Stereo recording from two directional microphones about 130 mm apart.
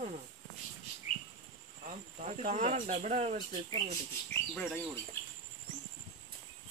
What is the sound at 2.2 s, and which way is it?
Speech, 70° right (ahead or behind).